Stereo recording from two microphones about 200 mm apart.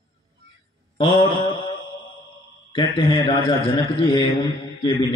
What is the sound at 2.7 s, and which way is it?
A man's voice, 25° left (ahead or behind).